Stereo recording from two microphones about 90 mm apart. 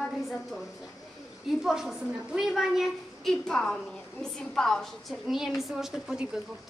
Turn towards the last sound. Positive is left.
turn(degrees=-5)  # may be behind; listen again after turning